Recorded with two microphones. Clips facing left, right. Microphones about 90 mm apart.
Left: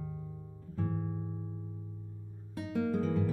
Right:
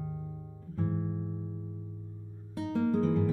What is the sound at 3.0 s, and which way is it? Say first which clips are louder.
Music: right 4 dB; 30° right (ahead or behind).